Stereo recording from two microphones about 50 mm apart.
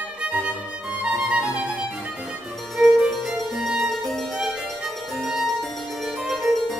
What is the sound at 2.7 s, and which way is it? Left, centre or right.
Harpsichord, centre.